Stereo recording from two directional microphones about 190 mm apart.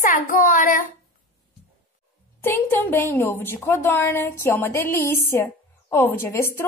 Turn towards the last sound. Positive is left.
turn(degrees=15)  # may be behind; listen again after turning